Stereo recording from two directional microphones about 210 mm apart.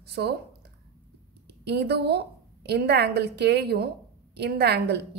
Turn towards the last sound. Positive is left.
turn(degrees=-50)  # may be behind; listen again after turning